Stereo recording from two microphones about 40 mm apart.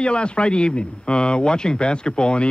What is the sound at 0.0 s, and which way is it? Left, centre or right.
Speech, left.